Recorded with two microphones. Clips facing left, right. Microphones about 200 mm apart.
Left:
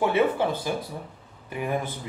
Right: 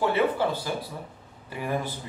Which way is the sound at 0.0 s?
20° left (ahead or behind).